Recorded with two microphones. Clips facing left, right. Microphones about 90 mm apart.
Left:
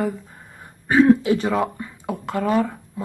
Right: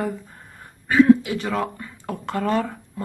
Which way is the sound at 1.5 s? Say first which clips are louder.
Left 3 dB; 15° left (ahead or behind).